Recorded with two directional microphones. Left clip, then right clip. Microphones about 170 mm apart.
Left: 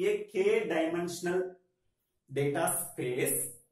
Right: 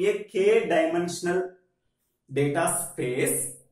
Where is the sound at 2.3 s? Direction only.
20° left (ahead or behind).